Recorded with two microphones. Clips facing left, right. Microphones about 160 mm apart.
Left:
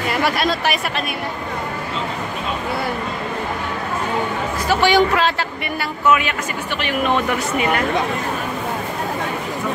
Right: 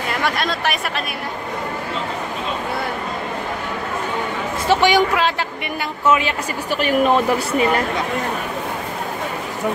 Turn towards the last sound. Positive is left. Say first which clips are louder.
# right 2 dB
turn(degrees=-35)  # may be behind; listen again after turning